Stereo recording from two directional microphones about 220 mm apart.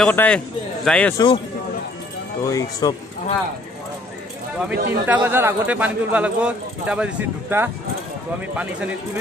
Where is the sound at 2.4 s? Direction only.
15° left (ahead or behind).